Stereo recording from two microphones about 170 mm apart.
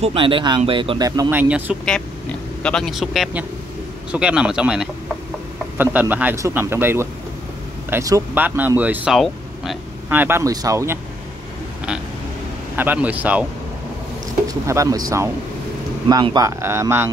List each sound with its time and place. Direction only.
0.0 s speech: 30° right (ahead or behind)
1.3 s speech: 10° right (ahead or behind)
2.6 s a man's voice: 5° left (ahead or behind)
10.0 s speech: 10° right (ahead or behind)
12.7 s speech: 10° right (ahead or behind)
14.5 s speech: 20° right (ahead or behind)